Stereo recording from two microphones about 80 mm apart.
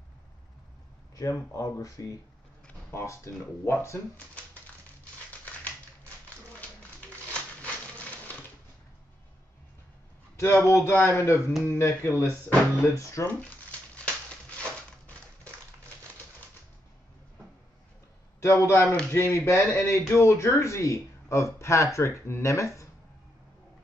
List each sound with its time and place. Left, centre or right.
1.1 s speech: left
5.3 s typewriter: centre
7.0 s a sound: centre
10.7 s speech: left
13.4 s a sound: centre
18.4 s speech: left